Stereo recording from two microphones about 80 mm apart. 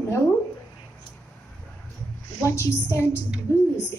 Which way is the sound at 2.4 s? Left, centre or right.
Left.